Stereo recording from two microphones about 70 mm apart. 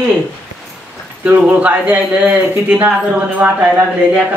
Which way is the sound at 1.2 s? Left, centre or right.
Right.